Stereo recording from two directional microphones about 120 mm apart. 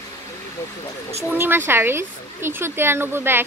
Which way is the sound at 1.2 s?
15° right (ahead or behind).